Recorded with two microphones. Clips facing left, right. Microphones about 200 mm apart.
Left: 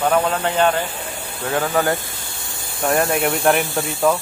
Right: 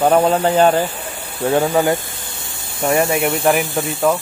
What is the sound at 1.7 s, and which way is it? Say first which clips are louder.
Speech: right 3 dB; 20° right (ahead or behind).